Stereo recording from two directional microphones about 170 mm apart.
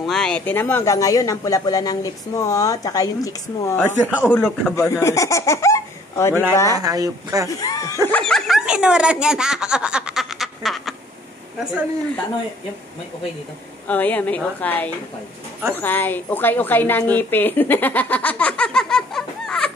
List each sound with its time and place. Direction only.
0.0 s speech: 5° left (ahead or behind); by 3.7 s 20° left (ahead or behind)
4.1 s a woman's voice: 10° left (ahead or behind)
4.7 s speech: 15° left (ahead or behind)
6.7 s speech: 20° right (ahead or behind)
7.5 s snicker: 20° left (ahead or behind); by 11.0 s centre (ahead or behind)
13.8 s a woman's voice: 10° left (ahead or behind)